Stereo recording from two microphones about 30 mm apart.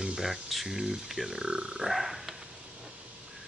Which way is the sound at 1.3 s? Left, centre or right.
Right.